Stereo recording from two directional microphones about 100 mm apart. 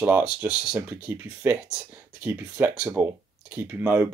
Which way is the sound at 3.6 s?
20° right (ahead or behind).